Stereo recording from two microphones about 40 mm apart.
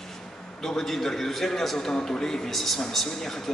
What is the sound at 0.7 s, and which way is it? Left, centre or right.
A man's voice, centre.